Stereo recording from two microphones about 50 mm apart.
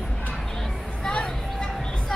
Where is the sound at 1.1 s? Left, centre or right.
Centre.